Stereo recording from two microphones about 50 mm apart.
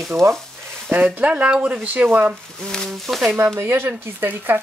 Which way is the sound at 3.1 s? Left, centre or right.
Centre.